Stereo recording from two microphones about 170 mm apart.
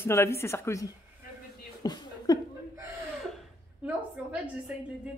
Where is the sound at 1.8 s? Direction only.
25° left (ahead or behind).